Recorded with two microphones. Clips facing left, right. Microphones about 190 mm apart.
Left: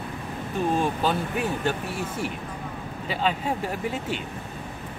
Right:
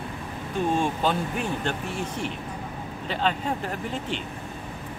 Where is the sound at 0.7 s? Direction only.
5° left (ahead or behind).